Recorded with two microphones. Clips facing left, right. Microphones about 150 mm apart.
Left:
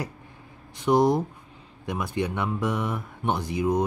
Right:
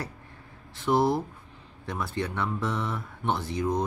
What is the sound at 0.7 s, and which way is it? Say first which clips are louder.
Speech: left 3 dB; 15° left (ahead or behind).